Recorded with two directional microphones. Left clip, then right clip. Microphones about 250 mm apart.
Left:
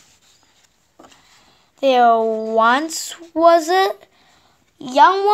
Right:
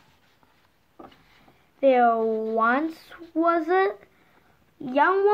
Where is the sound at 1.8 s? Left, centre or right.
Left.